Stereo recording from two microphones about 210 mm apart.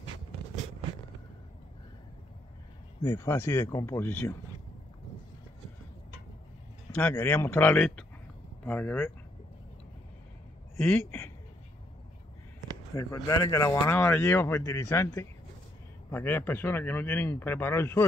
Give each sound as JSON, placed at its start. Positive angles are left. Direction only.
{"t": 3.0, "sound": "speech", "side_deg": 10}
{"t": 7.0, "sound": "speech", "side_deg": 5}
{"t": 10.8, "sound": "a man's voice", "side_deg": 10}
{"t": 12.9, "sound": "speech", "side_deg": 15}